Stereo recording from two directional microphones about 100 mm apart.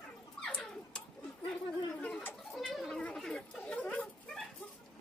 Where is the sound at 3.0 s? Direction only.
5° left (ahead or behind).